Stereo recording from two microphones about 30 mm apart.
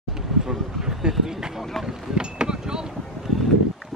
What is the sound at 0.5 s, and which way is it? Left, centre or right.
Speech, centre.